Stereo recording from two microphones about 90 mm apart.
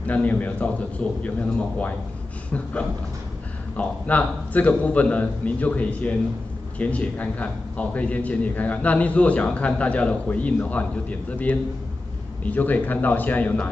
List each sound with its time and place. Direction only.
0.0 s a man's voice: 15° left (ahead or behind)
3.7 s a man's voice: 15° left (ahead or behind)